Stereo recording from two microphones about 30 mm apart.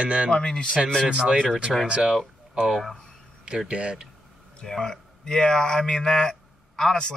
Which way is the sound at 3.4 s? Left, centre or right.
Right.